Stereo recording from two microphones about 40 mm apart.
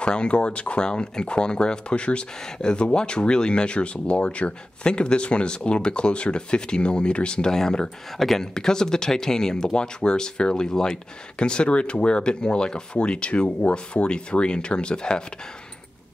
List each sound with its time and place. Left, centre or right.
0.0 s speech: left
8.2 s speech: centre; by 15.2 s left